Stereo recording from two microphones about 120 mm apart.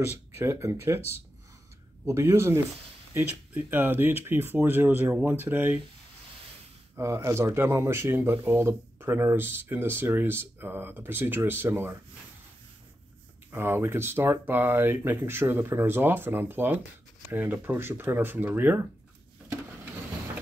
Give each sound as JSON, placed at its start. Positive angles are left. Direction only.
{"t": 0.4, "sound": "speech", "side_deg": -25}
{"t": 7.0, "sound": "speech", "side_deg": -25}
{"t": 13.5, "sound": "speech", "side_deg": -20}